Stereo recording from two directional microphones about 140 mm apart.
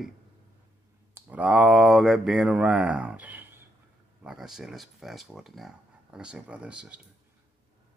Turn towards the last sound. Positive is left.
turn(degrees=-10)  # may be behind; listen again after turning